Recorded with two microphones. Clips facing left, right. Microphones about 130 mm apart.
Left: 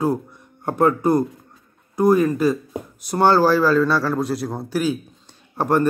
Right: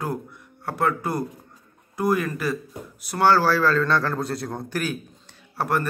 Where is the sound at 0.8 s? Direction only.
15° left (ahead or behind).